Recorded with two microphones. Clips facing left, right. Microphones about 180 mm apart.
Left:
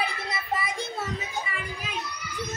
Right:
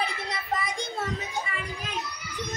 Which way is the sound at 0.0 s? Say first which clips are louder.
Even; 5° left (ahead or behind).